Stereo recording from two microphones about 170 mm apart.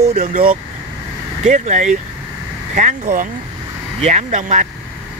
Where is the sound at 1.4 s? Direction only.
45° right (ahead or behind).